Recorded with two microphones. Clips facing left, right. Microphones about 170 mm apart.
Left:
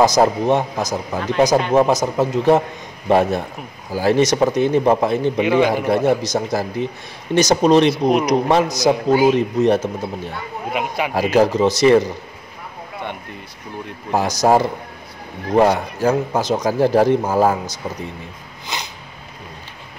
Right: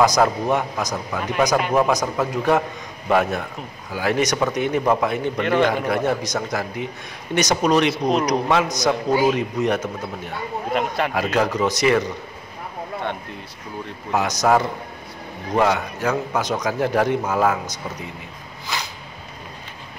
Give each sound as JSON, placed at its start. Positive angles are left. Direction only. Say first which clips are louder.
{"t": 0.0, "sound": "a man's voice", "louder": "left 3 dB", "side_deg": 25}
{"t": 5.4, "sound": "speech", "louder": "left 3 dB", "side_deg": 5}
{"t": 5.9, "sound": "a man's voice", "louder": "left 5 dB", "side_deg": 30}
{"t": 10.7, "sound": "speech", "louder": "even", "side_deg": 5}
{"t": 11.3, "sound": "speech", "louder": "left 7 dB", "side_deg": 30}
{"t": 14.1, "sound": "a man's voice", "louder": "left 3 dB", "side_deg": 30}
{"t": 18.7, "sound": "speech", "louder": "even", "side_deg": 20}